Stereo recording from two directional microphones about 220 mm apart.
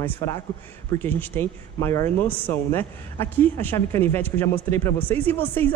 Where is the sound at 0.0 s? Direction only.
10° left (ahead or behind).